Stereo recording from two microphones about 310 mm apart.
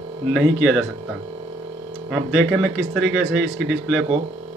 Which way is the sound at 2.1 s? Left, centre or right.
Centre.